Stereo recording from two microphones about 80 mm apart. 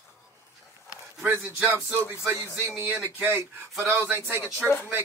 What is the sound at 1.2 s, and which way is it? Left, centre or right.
Speech, right.